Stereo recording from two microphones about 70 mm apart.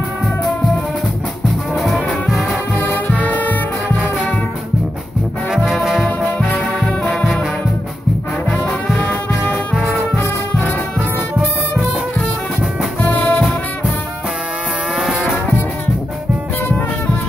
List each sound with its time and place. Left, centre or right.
1.8 s music: centre
3.1 s music: left
9.8 s brass instrument: centre
10.1 s brass instrument: left
13.0 s music: left
13.4 s music: centre
15.0 s music: centre